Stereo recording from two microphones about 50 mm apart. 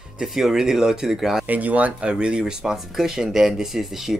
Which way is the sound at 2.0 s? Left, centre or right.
Centre.